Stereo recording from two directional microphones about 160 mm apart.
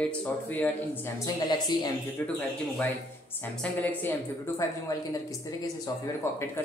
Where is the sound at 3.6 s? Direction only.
10° left (ahead or behind).